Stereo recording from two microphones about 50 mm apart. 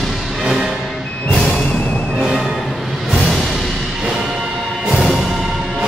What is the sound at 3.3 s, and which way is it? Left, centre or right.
Music, centre.